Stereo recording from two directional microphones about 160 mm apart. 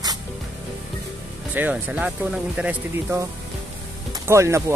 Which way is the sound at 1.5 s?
10° right (ahead or behind).